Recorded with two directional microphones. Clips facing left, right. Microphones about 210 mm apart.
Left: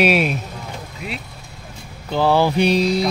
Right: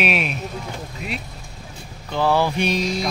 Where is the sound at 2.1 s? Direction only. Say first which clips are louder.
Left 3 dB; 30° left (ahead or behind).